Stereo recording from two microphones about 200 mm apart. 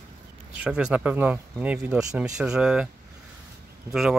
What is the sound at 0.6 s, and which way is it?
Speech, 5° right (ahead or behind).